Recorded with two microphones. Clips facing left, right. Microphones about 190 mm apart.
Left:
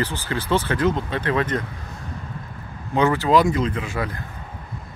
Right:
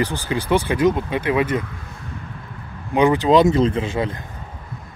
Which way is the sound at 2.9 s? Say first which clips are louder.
Right 3 dB; 15° right (ahead or behind).